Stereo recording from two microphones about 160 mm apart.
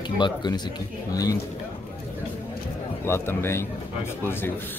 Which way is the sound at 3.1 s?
15° left (ahead or behind).